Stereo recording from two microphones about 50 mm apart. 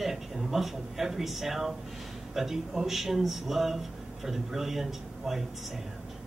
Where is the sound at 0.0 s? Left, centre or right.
Centre.